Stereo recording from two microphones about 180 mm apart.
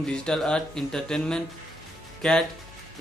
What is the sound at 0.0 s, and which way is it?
Speech, 5° left (ahead or behind).